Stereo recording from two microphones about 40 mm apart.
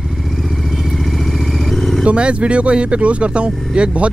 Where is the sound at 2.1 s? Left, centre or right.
Right.